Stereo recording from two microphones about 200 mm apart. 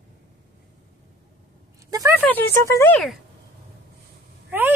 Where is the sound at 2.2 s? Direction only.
10° left (ahead or behind).